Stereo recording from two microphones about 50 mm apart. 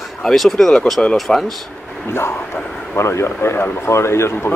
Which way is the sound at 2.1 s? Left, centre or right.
Left.